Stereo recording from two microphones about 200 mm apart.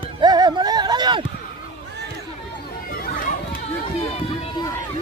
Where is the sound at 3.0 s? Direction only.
45° left (ahead or behind).